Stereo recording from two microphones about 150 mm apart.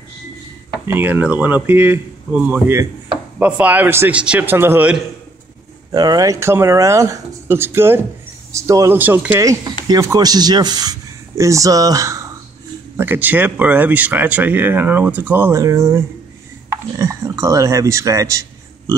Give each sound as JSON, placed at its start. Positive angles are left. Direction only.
{"t": 0.8, "sound": "speech", "side_deg": -15}
{"t": 5.9, "sound": "speech", "side_deg": -25}
{"t": 9.8, "sound": "speech", "side_deg": -25}